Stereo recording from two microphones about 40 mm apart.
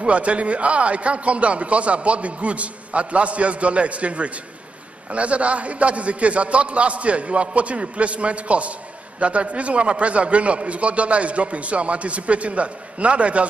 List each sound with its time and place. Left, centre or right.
0.0 s a man's voice: right